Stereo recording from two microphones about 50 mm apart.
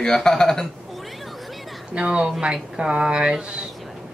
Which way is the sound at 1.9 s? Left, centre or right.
Right.